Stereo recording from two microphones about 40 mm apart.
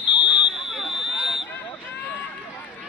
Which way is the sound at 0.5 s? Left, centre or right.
Centre.